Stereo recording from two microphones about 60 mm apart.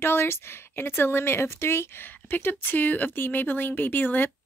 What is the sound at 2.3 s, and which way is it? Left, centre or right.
Speech, left.